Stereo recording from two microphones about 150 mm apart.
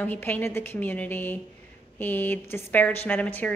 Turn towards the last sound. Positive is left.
turn(degrees=10)  # may be behind; listen again after turning